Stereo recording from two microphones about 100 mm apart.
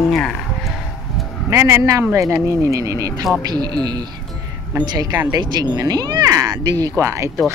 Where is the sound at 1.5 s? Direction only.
30° right (ahead or behind).